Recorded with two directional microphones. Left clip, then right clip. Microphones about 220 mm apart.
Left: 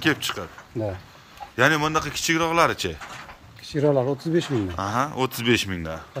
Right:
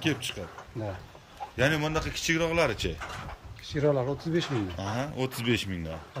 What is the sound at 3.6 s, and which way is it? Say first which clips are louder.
Speech: left 6 dB; 45° left (ahead or behind).